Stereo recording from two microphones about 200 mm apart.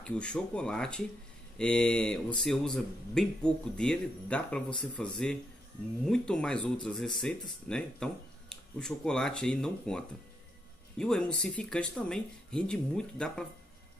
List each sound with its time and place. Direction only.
0.0 s speech: 5° left (ahead or behind)